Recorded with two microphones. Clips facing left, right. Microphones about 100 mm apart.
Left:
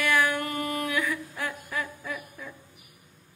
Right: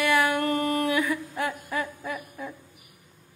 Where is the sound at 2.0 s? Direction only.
20° right (ahead or behind).